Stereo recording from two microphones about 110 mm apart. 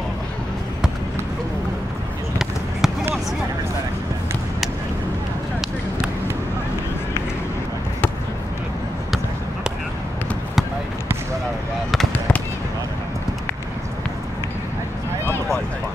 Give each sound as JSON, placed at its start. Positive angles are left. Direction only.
{"t": 2.3, "sound": "basketball bounce", "side_deg": -5}